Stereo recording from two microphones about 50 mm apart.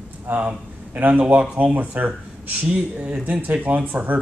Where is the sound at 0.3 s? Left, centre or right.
Right.